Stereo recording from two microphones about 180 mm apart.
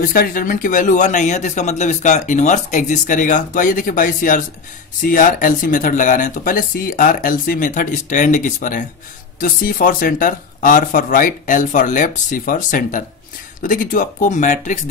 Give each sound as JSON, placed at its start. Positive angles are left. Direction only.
{"t": 0.0, "sound": "speech", "side_deg": 55}